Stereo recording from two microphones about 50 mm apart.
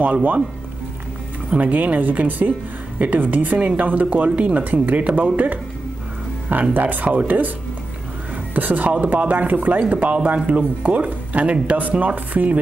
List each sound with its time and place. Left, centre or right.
0.0 s speech: right
1.6 s speech: right
8.5 s speech: right